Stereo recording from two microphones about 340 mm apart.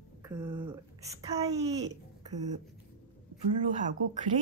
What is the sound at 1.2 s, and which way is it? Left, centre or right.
Speech, centre.